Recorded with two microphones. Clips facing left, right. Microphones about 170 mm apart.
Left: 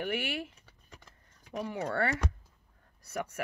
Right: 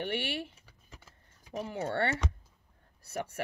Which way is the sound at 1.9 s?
25° right (ahead or behind).